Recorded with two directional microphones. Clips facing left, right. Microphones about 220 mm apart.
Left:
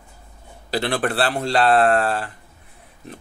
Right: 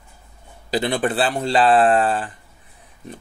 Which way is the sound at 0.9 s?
Centre (ahead or behind).